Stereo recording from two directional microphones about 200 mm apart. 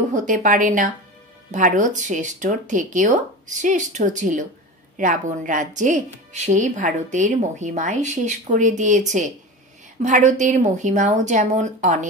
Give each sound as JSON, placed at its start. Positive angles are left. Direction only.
{"t": 0.1, "sound": "a woman's voice", "side_deg": -40}
{"t": 10.0, "sound": "a woman's voice", "side_deg": -35}